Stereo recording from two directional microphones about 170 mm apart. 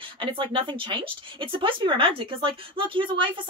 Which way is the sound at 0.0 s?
30° right (ahead or behind).